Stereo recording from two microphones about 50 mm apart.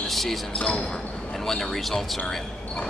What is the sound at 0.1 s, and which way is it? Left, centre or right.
Speech, centre.